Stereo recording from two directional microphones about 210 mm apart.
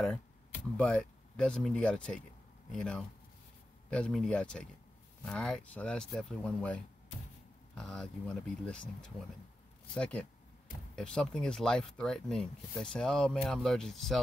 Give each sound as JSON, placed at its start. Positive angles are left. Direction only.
{"t": 0.7, "sound": "speech", "side_deg": 5}